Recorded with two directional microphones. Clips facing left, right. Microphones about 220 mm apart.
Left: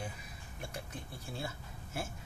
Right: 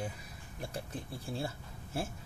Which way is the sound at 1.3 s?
30° right (ahead or behind).